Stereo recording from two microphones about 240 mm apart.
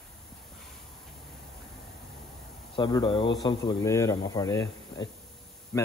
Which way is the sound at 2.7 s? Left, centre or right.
Centre.